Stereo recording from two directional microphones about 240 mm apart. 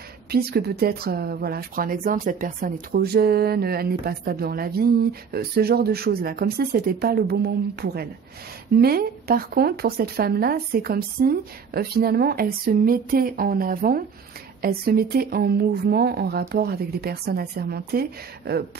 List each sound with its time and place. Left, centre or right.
0.3 s speech: right